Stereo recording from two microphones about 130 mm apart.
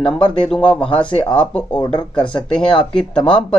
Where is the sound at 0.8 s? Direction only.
45° left (ahead or behind).